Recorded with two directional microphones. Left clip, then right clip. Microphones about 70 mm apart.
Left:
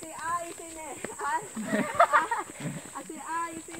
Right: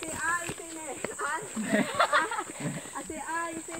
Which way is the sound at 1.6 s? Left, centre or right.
Right.